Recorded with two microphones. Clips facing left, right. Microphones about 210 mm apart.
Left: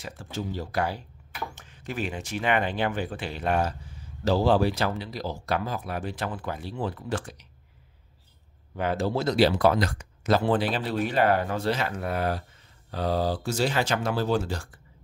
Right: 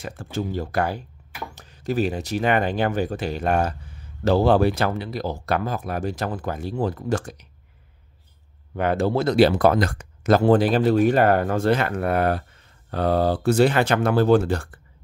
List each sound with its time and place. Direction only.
0.0 s speech: 50° right (ahead or behind)
1.5 s speech: 40° right (ahead or behind)
8.7 s speech: 60° right (ahead or behind)